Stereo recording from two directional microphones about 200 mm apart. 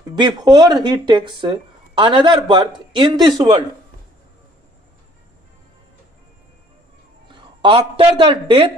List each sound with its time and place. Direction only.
0.4 s speech: 20° right (ahead or behind)
7.2 s speech: 25° right (ahead or behind)